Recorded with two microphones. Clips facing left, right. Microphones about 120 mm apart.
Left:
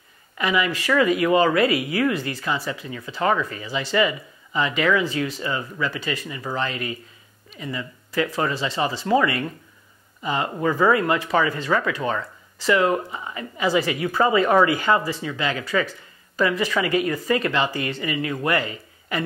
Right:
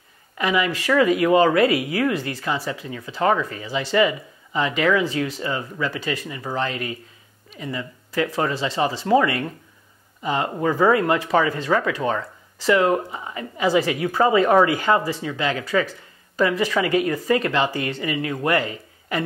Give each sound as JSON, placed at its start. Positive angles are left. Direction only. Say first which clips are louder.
{"t": 0.4, "sound": "speech", "louder": "right 1 dB", "side_deg": -45}